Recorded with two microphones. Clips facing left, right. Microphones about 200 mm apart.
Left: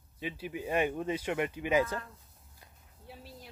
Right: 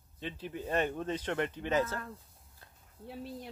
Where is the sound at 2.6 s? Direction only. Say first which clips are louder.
Even; 10° left (ahead or behind).